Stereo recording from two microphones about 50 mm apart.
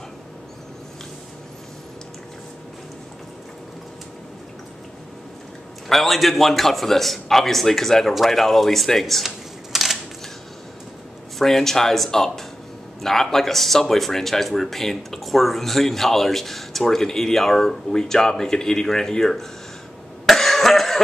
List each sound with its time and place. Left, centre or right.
5.9 s speech: centre
11.3 s speech: centre
20.2 s cough: centre